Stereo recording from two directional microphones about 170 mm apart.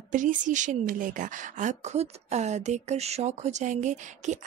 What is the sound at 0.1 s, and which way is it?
A woman's voice, 50° right (ahead or behind).